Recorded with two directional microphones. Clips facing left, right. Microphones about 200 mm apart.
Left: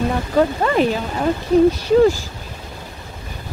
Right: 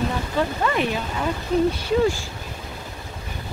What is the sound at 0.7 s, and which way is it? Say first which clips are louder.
Speech: left 6 dB; 40° left (ahead or behind).